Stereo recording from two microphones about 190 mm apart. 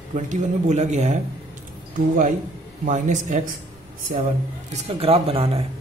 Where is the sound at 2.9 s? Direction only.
40° right (ahead or behind).